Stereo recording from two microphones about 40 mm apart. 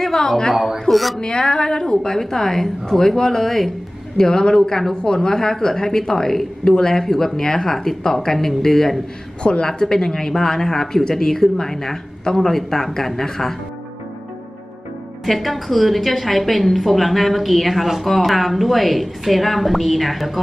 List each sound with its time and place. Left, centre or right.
0.0 s a woman's voice: centre
0.7 s a woman's voice: centre
1.2 s a woman's voice: left
9.4 s a woman's voice: left; by 13.6 s centre
15.2 s a woman's voice: centre